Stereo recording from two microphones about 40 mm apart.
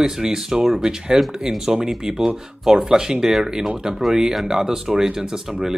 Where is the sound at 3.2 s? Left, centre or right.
Centre.